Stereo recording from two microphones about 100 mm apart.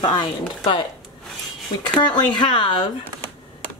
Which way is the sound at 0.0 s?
45° left (ahead or behind).